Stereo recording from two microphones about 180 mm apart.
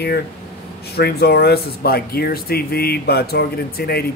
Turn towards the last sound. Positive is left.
turn(degrees=60)  # may be behind; listen again after turning